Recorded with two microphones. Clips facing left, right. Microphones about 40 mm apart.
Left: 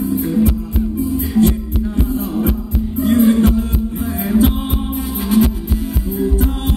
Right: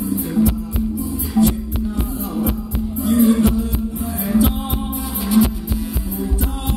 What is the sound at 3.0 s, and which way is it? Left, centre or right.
Music, left.